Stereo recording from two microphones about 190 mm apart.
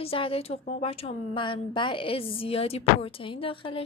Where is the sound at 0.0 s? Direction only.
30° left (ahead or behind).